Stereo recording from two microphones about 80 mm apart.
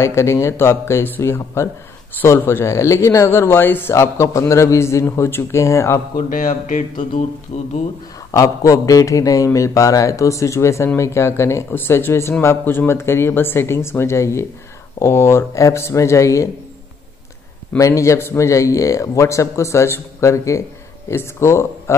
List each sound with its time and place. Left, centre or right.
0.0 s speech: left
3.9 s speech: left
8.4 s a man's voice: left
17.7 s speech: left